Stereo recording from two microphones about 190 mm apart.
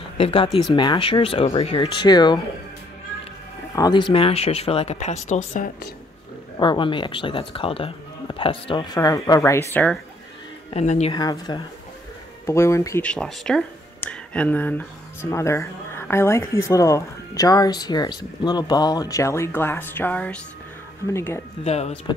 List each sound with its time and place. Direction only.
0.2 s speech: 30° left (ahead or behind)
3.7 s speech: 20° left (ahead or behind); by 5.7 s 40° left (ahead or behind)
6.6 s speech: 25° left (ahead or behind); by 9.9 s 10° left (ahead or behind)
10.7 s speech: 35° left (ahead or behind)
11.1 s speech: 20° left (ahead or behind)
21.6 s speech: 35° left (ahead or behind)